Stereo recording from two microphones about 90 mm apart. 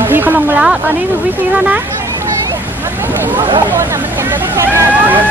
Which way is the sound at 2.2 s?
25° right (ahead or behind).